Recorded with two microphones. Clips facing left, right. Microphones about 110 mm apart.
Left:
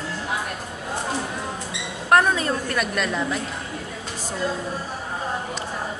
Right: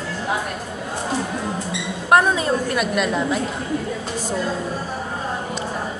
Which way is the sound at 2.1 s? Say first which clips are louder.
Right 2 dB; 20° right (ahead or behind).